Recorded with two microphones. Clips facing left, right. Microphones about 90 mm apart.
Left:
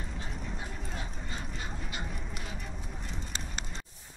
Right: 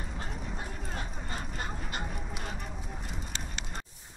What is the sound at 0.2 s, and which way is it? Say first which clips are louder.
Clip-clop: right 3 dB; 45° right (ahead or behind).